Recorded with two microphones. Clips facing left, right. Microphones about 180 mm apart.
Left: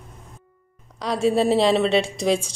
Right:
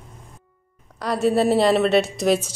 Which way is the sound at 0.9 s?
Centre (ahead or behind).